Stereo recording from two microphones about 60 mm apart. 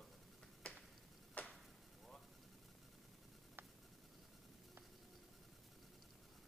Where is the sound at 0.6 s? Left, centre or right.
Centre.